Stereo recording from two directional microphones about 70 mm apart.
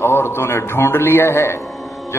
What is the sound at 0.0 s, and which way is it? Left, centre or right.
A man's voice, left.